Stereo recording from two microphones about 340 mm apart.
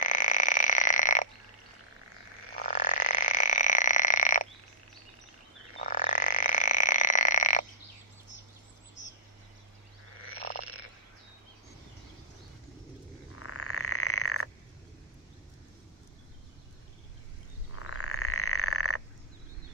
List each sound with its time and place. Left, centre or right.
0.0 s frog: left
2.6 s frog: left
5.8 s frog: left
9.0 s a sound: left
10.2 s frog: right
13.4 s frog: left
17.7 s frog: left